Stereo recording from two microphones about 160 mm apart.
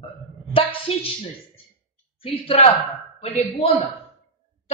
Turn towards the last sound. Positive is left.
turn(degrees=40)  # may be behind; listen again after turning